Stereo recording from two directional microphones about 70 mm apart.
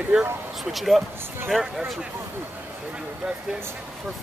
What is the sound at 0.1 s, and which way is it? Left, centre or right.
Speech, centre.